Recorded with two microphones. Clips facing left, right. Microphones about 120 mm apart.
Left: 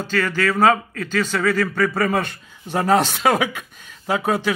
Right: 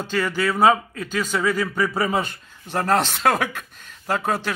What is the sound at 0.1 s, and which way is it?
A man's voice, 15° right (ahead or behind).